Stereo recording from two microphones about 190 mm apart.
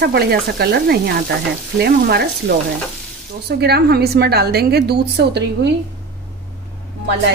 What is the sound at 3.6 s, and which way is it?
Frying, 55° right (ahead or behind).